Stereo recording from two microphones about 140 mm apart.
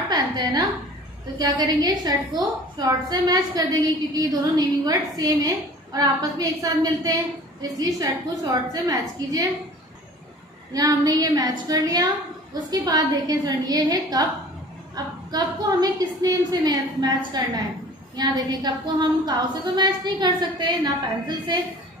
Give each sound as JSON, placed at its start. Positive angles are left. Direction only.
{"t": 0.1, "sound": "a sound", "side_deg": -30}
{"t": 1.4, "sound": "a woman's voice", "side_deg": -30}
{"t": 10.7, "sound": "a woman's voice", "side_deg": -25}
{"t": 15.3, "sound": "a woman's voice", "side_deg": -25}